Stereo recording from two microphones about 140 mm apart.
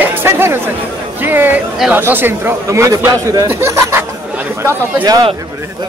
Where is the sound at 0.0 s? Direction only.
15° right (ahead or behind).